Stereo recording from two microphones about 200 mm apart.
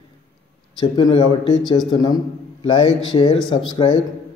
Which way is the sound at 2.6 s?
25° left (ahead or behind).